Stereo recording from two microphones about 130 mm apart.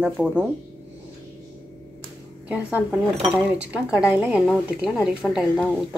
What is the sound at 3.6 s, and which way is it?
Speech, 10° right (ahead or behind).